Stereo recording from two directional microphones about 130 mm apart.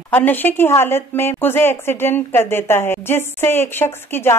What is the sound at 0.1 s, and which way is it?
A woman's voice, 15° left (ahead or behind).